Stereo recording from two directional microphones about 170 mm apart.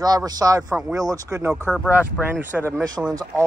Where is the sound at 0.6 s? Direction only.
5° right (ahead or behind).